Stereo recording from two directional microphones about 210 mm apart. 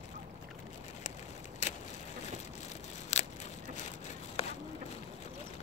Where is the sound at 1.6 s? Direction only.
35° left (ahead or behind).